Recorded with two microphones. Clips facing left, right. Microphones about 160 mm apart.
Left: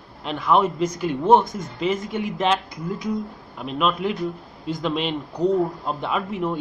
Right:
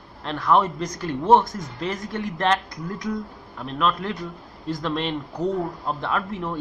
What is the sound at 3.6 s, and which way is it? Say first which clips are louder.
Speech: left 2 dB; 15° left (ahead or behind).